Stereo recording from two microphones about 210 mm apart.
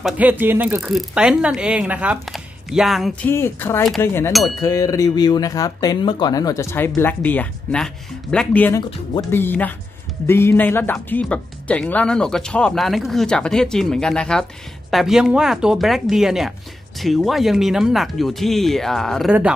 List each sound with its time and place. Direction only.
0.0 s speech: 10° right (ahead or behind)
3.3 s speech: 10° left (ahead or behind)
4.3 s speech: centre (ahead or behind)
4.6 s speech: 15° left (ahead or behind); by 19.5 s 5° right (ahead or behind)